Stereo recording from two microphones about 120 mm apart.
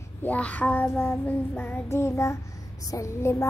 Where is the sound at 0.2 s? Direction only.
15° left (ahead or behind).